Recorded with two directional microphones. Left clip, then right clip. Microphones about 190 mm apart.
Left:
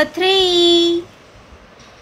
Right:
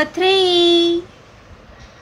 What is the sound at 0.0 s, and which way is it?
Child singing, centre (ahead or behind).